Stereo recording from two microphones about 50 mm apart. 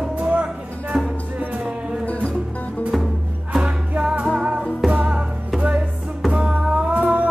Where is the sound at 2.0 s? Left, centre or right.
Left.